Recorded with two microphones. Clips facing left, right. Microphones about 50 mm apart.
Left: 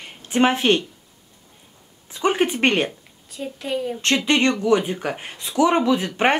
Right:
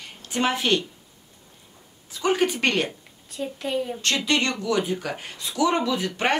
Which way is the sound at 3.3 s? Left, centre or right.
Centre.